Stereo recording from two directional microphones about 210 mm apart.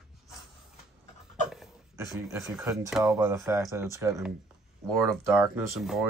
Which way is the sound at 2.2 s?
15° right (ahead or behind).